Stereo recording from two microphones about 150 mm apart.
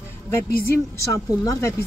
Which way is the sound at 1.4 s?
20° left (ahead or behind).